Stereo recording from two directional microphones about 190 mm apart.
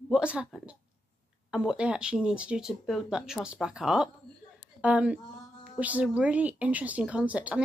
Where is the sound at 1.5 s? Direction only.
5° right (ahead or behind).